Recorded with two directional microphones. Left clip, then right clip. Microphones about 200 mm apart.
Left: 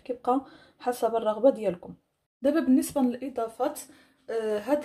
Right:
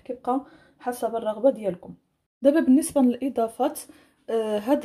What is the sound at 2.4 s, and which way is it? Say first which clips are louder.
A woman's voice: right 5 dB; 20° right (ahead or behind).